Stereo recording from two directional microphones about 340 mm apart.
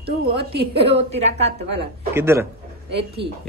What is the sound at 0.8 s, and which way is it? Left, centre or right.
Speech, centre.